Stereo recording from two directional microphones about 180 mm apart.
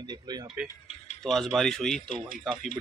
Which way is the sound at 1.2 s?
Centre (ahead or behind).